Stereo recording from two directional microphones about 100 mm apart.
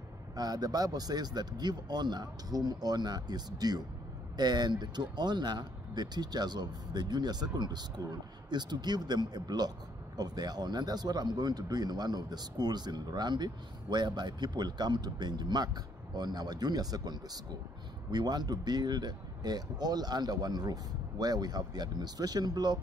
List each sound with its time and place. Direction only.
0.4 s speech: 40° right (ahead or behind)